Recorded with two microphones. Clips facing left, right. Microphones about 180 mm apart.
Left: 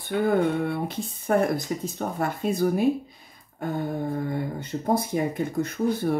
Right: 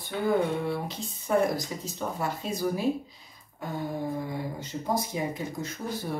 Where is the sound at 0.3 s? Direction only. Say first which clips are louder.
Left 1 dB; 55° left (ahead or behind).